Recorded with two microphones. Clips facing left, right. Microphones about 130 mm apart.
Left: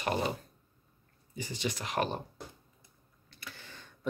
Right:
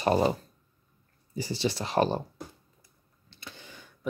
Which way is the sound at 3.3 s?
20° right (ahead or behind).